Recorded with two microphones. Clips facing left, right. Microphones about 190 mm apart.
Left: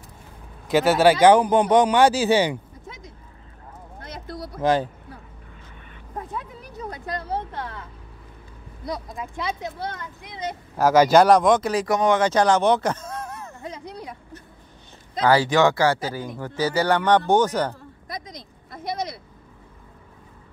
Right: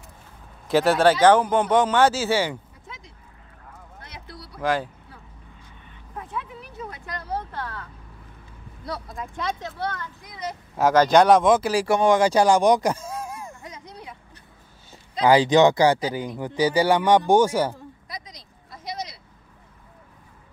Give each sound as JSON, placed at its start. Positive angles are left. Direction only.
{"t": 0.7, "sound": "speech", "side_deg": 0}
{"t": 4.1, "sound": "a sound", "side_deg": 50}
{"t": 4.6, "sound": "speech", "side_deg": 20}
{"t": 6.1, "sound": "a sound", "side_deg": 40}
{"t": 8.8, "sound": "speech", "side_deg": 15}
{"t": 10.8, "sound": "speech", "side_deg": 5}
{"t": 13.6, "sound": "vehicle", "side_deg": 35}
{"t": 15.2, "sound": "speech", "side_deg": -15}
{"t": 18.0, "sound": "a sound", "side_deg": 50}